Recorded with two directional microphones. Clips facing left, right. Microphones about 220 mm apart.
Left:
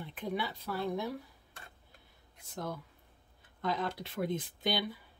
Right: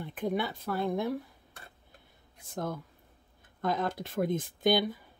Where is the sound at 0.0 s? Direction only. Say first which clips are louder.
Right 5 dB; 50° right (ahead or behind).